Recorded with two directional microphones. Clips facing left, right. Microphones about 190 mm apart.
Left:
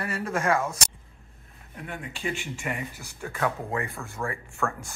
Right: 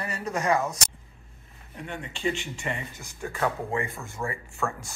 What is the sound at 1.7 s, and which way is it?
Speech, 5° left (ahead or behind).